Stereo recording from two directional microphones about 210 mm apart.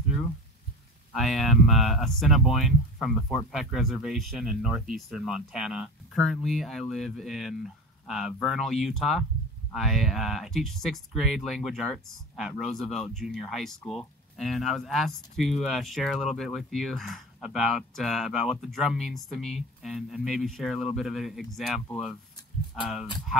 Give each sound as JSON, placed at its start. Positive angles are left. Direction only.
{"t": 1.1, "sound": "speech", "side_deg": 0}